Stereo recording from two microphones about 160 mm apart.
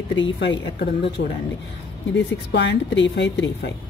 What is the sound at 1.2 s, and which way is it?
Speech, 70° left (ahead or behind).